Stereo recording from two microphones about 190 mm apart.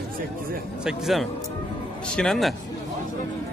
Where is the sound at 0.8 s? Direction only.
Centre (ahead or behind).